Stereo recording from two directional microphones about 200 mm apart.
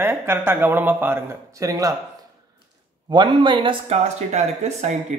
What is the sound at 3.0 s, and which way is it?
Speech, 20° right (ahead or behind).